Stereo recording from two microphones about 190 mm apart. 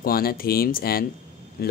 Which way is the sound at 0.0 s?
50° left (ahead or behind).